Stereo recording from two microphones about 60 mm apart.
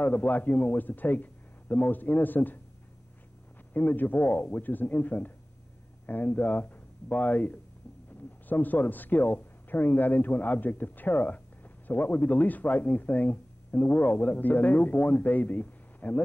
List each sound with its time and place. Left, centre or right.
0.0 s speech: left
3.7 s speech: left